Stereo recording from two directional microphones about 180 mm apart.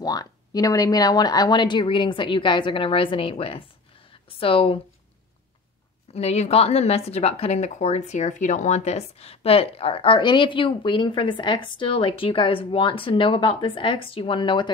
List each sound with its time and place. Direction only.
0.0 s a woman's voice: 20° left (ahead or behind)
4.1 s a sound: 30° left (ahead or behind)
6.1 s a woman's voice: 35° left (ahead or behind)